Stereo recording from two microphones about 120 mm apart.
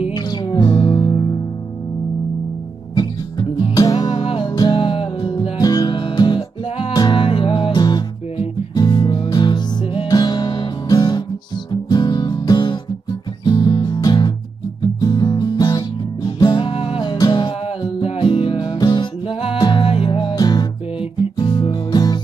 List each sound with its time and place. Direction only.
0.1 s music: 35° left (ahead or behind)
2.9 s music: 35° left (ahead or behind)
18.0 s music: 50° left (ahead or behind)
20.3 s music: 35° left (ahead or behind)